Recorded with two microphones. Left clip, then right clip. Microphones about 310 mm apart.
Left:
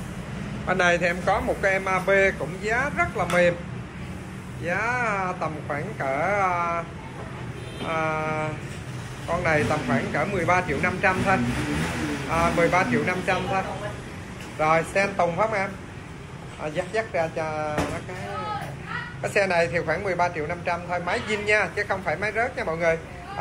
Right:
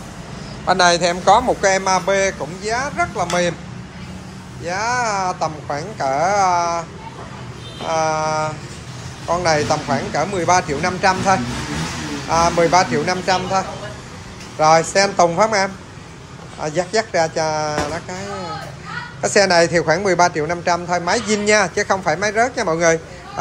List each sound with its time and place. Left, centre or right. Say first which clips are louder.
0.7 s speech: right 7 dB; centre
4.6 s speech: right 5 dB; centre
7.9 s speech: right 8 dB; centre
19.2 s speech: right 8 dB; right